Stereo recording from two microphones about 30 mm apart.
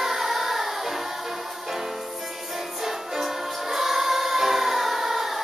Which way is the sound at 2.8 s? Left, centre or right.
Centre.